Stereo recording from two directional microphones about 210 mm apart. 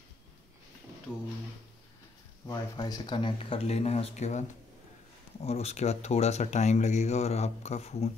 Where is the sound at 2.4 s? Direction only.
20° left (ahead or behind).